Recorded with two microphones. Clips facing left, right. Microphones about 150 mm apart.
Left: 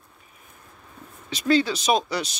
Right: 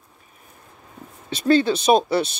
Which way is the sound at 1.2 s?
55° right (ahead or behind).